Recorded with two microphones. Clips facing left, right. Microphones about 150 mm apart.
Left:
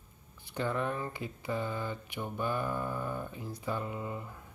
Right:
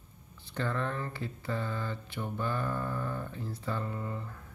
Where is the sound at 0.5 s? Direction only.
15° left (ahead or behind).